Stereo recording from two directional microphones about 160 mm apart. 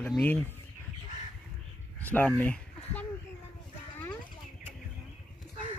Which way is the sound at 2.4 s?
10° left (ahead or behind).